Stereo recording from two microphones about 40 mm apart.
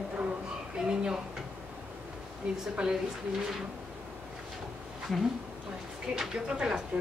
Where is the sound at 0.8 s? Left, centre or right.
Centre.